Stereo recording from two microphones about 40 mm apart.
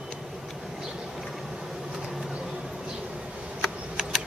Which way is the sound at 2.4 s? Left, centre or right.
Centre.